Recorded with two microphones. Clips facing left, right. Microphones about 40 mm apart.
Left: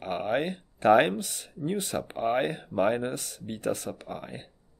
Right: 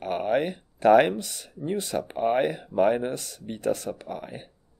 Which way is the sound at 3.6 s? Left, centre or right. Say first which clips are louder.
Right 4 dB; left.